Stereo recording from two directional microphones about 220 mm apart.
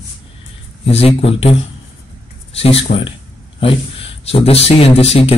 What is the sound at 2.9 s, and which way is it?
A man's voice, 35° left (ahead or behind).